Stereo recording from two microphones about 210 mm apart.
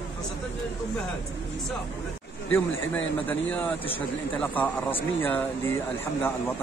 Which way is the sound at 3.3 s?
5° left (ahead or behind).